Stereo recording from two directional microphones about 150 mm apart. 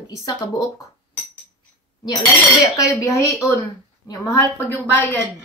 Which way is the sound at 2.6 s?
20° left (ahead or behind).